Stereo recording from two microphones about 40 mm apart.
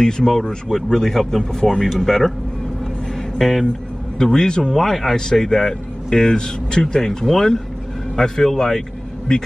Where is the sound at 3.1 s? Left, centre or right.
Centre.